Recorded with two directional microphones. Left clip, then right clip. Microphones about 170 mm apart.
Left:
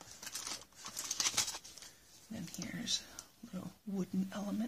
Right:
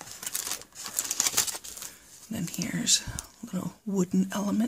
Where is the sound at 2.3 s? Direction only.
45° right (ahead or behind).